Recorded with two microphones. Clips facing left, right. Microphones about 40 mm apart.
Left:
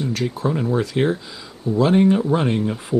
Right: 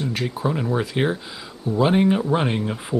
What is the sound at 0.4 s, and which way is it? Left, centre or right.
Speech, right.